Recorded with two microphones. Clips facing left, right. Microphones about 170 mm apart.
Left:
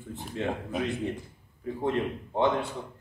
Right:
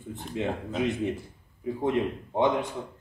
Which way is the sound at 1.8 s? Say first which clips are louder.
Right 2 dB; 15° right (ahead or behind).